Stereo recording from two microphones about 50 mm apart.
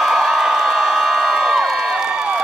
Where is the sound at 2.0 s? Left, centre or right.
Right.